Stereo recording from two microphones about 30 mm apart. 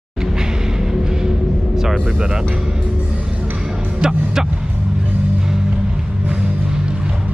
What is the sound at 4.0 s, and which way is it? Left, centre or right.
Speech, right.